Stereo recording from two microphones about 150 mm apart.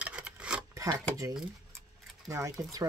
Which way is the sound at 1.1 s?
25° right (ahead or behind).